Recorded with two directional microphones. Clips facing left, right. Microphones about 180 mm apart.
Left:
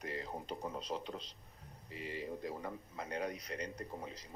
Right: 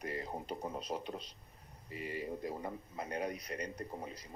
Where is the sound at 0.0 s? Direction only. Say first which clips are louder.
Right 2 dB; 15° right (ahead or behind).